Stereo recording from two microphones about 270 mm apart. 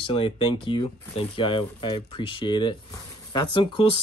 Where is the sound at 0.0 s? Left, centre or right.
Centre.